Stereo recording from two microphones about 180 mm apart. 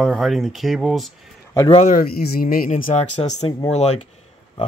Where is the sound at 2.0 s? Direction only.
55° left (ahead or behind); by 4.0 s 40° left (ahead or behind).